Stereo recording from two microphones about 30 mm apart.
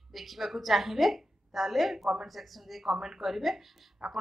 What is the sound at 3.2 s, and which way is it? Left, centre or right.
Speech, centre.